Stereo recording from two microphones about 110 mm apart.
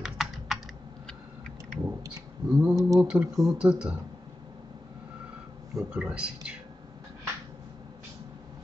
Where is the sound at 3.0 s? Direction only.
10° right (ahead or behind).